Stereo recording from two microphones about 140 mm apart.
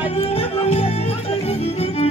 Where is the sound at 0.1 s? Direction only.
45° left (ahead or behind).